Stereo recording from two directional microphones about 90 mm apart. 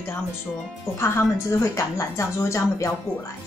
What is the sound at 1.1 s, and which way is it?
A woman's voice, 35° left (ahead or behind).